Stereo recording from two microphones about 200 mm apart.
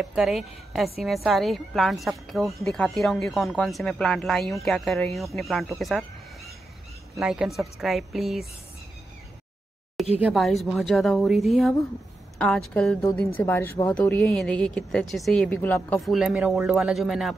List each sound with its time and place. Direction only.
0.0 s speech: centre (ahead or behind)
7.2 s speech: 5° right (ahead or behind)
10.2 s a woman's voice: centre (ahead or behind)